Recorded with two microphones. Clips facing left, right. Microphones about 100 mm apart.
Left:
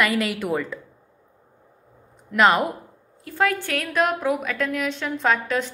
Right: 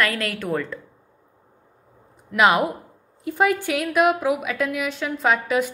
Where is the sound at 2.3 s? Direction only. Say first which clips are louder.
Even; 5° right (ahead or behind).